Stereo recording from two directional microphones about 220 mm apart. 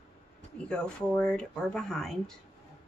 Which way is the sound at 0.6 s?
5° left (ahead or behind).